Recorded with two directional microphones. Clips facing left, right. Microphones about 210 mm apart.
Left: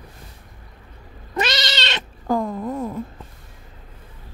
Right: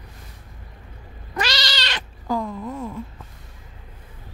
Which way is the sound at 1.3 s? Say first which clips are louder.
Left 3 dB; 20° left (ahead or behind).